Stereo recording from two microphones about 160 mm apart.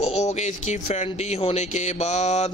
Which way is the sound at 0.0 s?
45° left (ahead or behind).